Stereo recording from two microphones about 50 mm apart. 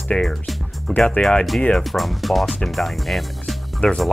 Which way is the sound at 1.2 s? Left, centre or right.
Left.